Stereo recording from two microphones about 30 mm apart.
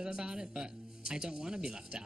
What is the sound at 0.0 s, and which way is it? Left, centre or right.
Speech, right.